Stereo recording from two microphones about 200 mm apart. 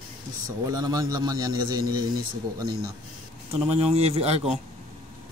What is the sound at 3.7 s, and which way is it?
Speech, 30° right (ahead or behind).